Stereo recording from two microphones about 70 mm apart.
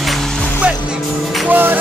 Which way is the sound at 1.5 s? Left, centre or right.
Right.